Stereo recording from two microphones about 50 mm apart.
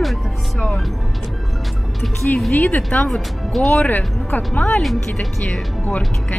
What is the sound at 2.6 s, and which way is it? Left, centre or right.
Speech, left.